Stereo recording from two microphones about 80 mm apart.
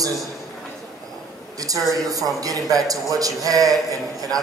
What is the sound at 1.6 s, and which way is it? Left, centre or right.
A man's voice, right.